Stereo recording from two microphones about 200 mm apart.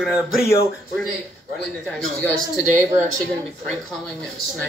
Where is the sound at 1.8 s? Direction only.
Centre (ahead or behind).